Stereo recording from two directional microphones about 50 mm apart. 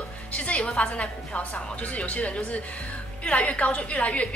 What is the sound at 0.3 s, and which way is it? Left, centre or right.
A woman's voice, left.